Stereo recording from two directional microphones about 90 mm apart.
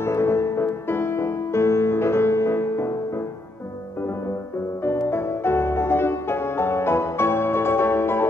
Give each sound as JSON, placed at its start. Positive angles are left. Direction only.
{"t": 0.0, "sound": "music", "side_deg": 30}
{"t": 4.8, "sound": "music", "side_deg": 25}